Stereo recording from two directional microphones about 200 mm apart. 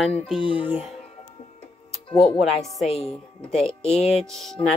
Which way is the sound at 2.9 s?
30° left (ahead or behind).